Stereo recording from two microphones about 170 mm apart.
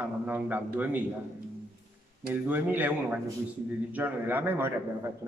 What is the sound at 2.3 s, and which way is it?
Speech, 10° right (ahead or behind).